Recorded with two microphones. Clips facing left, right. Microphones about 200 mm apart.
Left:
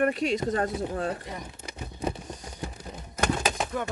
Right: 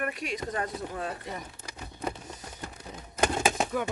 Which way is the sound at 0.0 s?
30° left (ahead or behind).